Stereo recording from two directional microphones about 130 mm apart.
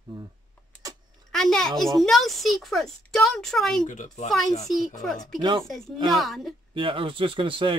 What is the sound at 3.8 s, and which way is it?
Speech, 80° left.